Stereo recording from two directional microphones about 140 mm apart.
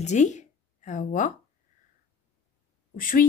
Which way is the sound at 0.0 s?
55° left (ahead or behind).